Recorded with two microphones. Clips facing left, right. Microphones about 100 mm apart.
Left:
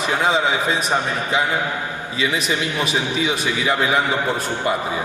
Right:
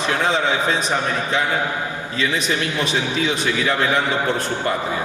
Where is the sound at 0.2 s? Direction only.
10° left (ahead or behind).